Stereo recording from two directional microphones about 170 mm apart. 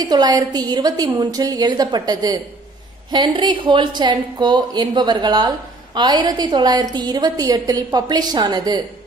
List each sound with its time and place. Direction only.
0.0 s a woman's voice: 25° right (ahead or behind)